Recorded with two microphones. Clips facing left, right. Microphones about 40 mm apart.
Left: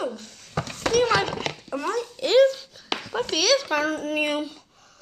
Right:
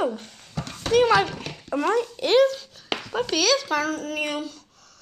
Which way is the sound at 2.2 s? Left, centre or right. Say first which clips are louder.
Left 3 dB; centre.